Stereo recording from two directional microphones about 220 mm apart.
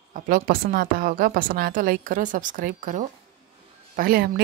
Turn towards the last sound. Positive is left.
turn(degrees=-45)  # may be behind; listen again after turning